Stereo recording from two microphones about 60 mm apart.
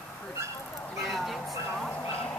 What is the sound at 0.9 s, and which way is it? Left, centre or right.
Speech, centre.